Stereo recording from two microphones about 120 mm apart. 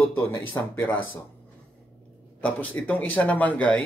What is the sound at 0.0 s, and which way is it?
Speech, 15° left (ahead or behind).